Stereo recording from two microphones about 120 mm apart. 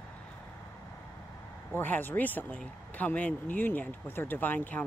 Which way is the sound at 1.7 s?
15° left (ahead or behind).